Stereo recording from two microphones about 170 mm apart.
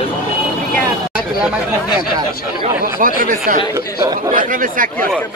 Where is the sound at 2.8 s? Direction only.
55° right (ahead or behind).